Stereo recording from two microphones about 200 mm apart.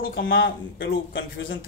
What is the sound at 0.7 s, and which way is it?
Speech, 65° left (ahead or behind).